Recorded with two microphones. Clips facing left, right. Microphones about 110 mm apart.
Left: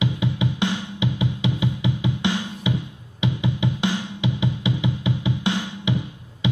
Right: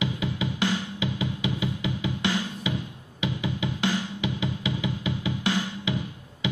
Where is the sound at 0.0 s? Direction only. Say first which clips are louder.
Left 4 dB; 20° left (ahead or behind).